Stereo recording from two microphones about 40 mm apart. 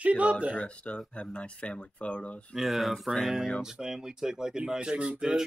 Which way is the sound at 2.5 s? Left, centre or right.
Centre.